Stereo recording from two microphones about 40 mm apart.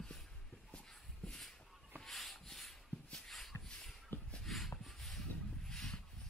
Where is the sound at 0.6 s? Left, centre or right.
Left.